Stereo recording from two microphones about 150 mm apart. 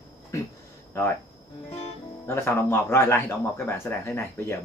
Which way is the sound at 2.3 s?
15° left (ahead or behind).